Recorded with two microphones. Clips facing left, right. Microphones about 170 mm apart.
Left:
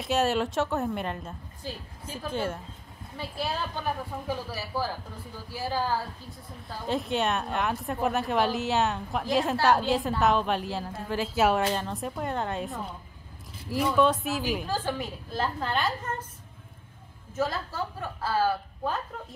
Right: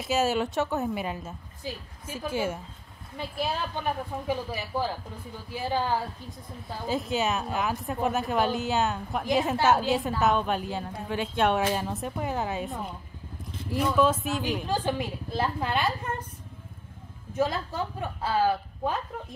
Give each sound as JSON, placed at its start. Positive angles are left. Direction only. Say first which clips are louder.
{"t": 0.0, "sound": "a woman's voice", "louder": "even", "side_deg": 0}
{"t": 6.9, "sound": "a woman's voice", "louder": "even", "side_deg": 0}
{"t": 14.7, "sound": "a woman's voice", "louder": "right 2 dB", "side_deg": -15}
{"t": 17.3, "sound": "a woman's voice", "louder": "right 2 dB", "side_deg": -15}